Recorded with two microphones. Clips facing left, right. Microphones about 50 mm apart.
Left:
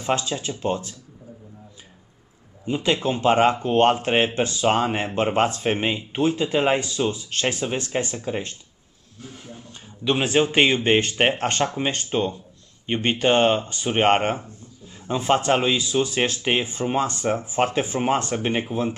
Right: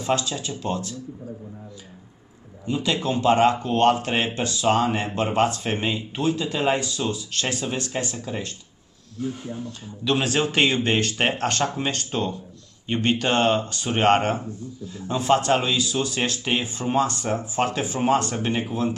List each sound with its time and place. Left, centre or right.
0.0 s speech: left
2.6 s speech: left
9.7 s speech: left